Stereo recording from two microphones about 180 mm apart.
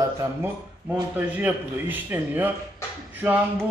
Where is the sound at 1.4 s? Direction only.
10° right (ahead or behind).